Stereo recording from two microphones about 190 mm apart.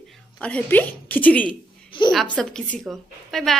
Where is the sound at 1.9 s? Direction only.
25° left (ahead or behind).